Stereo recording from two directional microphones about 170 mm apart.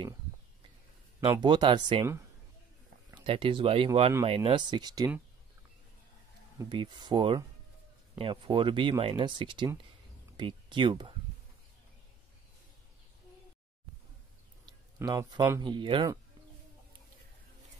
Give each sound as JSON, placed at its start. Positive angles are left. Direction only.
{"t": 1.2, "sound": "speech", "side_deg": -25}
{"t": 3.3, "sound": "speech", "side_deg": -30}
{"t": 6.7, "sound": "speech", "side_deg": -25}
{"t": 14.7, "sound": "speech", "side_deg": -25}